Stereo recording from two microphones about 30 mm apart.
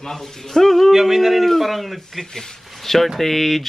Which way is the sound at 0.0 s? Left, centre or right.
Centre.